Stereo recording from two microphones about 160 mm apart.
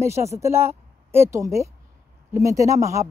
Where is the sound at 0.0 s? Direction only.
15° right (ahead or behind).